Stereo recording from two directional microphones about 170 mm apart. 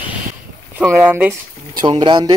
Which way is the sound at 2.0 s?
25° right (ahead or behind).